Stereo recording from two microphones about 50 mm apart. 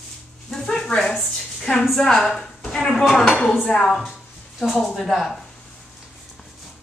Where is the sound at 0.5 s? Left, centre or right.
Centre.